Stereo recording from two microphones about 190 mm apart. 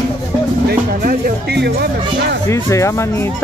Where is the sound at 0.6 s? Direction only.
55° right (ahead or behind).